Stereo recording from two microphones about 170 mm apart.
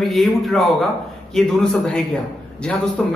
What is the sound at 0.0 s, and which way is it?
A man's voice, centre (ahead or behind).